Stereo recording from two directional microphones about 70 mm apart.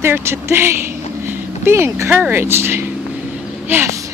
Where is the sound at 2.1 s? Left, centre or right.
Right.